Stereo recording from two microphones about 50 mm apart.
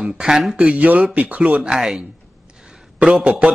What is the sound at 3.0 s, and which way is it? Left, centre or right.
Speech, centre.